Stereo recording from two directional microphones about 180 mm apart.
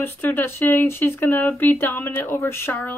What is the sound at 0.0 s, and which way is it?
Speech, 10° left (ahead or behind).